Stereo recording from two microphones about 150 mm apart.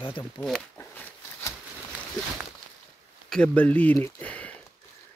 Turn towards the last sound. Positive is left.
turn(degrees=10)  # may be behind; listen again after turning